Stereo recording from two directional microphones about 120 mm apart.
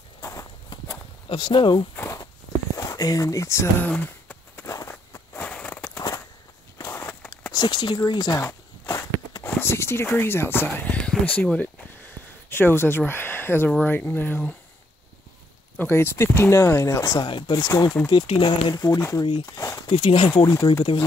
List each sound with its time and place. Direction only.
0.2 s walk: 25° left (ahead or behind)
1.3 s speech: 40° left (ahead or behind)
2.8 s speech: 30° left (ahead or behind)
3.9 s a sound: 15° left (ahead or behind)
5.9 s a sound: 30° left (ahead or behind)
7.5 s speech: 35° left (ahead or behind); by 14.5 s 15° left (ahead or behind)
15.8 s speech: 20° left (ahead or behind)
17.3 s speech: 40° left (ahead or behind)
18.1 s speech: 45° left (ahead or behind)
18.8 s speech: 30° left (ahead or behind)
19.9 s speech: 45° left (ahead or behind)